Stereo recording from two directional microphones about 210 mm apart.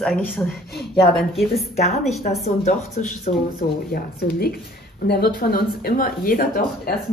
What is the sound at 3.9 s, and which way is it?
Speech, 45° left (ahead or behind).